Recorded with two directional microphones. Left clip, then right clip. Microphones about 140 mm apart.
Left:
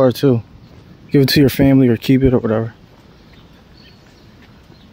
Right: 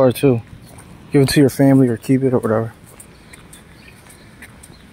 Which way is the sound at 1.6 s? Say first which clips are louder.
Left 1 dB; 70° left (ahead or behind).